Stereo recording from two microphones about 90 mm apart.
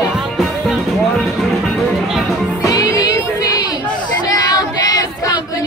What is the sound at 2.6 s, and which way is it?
Music, 40° left (ahead or behind).